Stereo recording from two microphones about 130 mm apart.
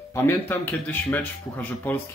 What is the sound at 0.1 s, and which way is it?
Speech, 20° left (ahead or behind).